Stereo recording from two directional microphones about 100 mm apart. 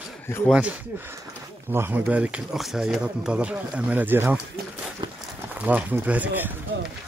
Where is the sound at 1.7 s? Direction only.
20° right (ahead or behind).